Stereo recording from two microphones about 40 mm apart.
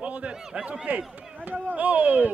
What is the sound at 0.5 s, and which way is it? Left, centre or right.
Speech, right.